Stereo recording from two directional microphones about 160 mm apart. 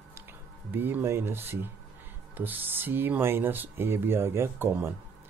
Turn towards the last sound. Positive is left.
turn(degrees=-15)  # may be behind; listen again after turning